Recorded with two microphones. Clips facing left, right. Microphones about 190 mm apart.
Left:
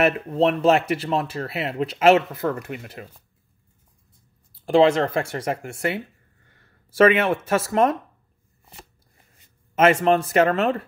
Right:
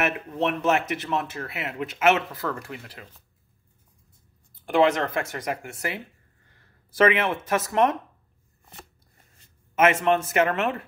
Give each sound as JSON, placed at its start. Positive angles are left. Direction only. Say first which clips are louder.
{"t": 0.0, "sound": "speech", "louder": "left 6 dB", "side_deg": 30}
{"t": 4.6, "sound": "speech", "louder": "left 4 dB", "side_deg": 30}
{"t": 9.8, "sound": "speech", "louder": "left 3 dB", "side_deg": 30}